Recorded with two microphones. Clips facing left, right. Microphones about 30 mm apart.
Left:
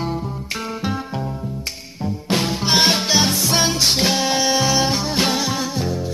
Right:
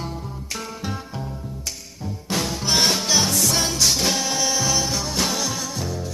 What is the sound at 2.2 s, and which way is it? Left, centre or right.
Music, left.